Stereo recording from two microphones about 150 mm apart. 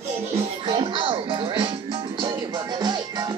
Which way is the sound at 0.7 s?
30° right (ahead or behind).